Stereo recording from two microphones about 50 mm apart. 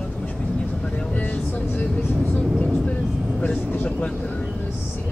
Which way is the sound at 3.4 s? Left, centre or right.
Left.